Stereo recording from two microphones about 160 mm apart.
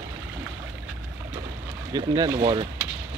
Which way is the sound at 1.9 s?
25° right (ahead or behind).